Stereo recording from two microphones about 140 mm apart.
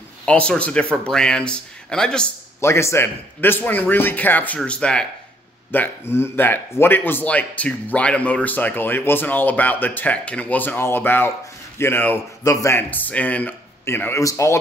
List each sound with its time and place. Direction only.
0.2 s speech: 10° left (ahead or behind)
2.6 s speech: 20° left (ahead or behind)